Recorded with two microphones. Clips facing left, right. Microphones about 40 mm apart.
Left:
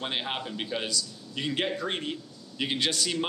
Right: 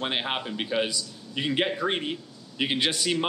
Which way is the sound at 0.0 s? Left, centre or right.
Centre.